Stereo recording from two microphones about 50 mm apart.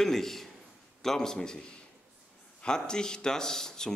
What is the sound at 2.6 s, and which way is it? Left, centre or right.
A man's voice, centre.